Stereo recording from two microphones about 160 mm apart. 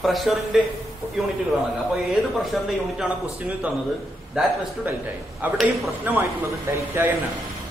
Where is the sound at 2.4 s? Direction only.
Centre (ahead or behind).